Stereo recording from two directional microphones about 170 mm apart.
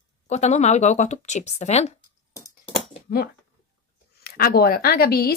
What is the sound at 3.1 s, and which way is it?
Speech, 65° left (ahead or behind).